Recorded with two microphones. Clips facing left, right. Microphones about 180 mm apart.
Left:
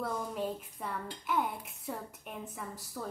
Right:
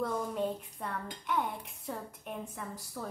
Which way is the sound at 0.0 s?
5° left (ahead or behind).